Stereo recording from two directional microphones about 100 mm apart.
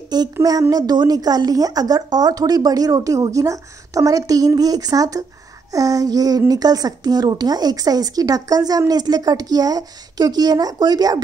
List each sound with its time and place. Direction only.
0.1 s speech: 45° right (ahead or behind)